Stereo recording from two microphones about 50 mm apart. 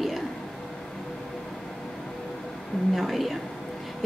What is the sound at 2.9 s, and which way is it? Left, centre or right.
Speech, centre.